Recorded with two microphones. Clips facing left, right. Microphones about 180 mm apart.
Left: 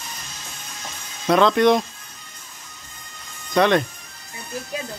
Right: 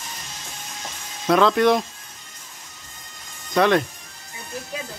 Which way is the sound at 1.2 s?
Centre (ahead or behind).